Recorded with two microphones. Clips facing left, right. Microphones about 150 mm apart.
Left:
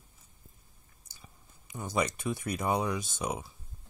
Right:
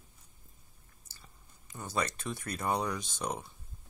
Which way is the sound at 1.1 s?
15° left (ahead or behind).